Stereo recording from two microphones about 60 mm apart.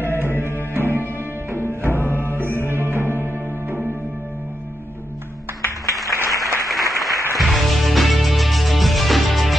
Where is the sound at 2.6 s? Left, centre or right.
Right.